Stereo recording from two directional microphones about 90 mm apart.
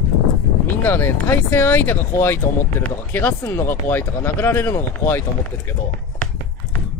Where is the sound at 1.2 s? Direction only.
20° left (ahead or behind).